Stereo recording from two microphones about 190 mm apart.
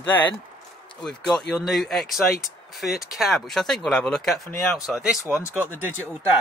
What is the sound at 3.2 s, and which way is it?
Speech, centre (ahead or behind).